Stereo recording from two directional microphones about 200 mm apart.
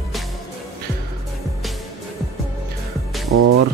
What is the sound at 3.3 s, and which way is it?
Music, 90° right.